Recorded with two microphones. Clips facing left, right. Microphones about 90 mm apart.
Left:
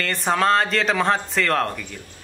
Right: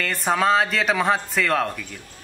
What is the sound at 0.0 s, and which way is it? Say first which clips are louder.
Speech: even; centre (ahead or behind).